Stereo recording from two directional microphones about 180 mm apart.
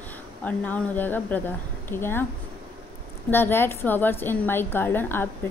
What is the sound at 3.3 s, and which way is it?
Speech, 10° left (ahead or behind).